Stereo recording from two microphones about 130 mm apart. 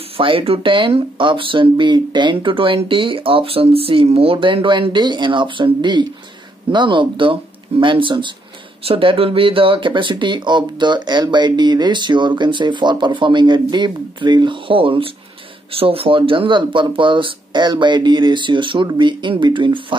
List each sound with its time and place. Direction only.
0.2 s speech: 45° right (ahead or behind)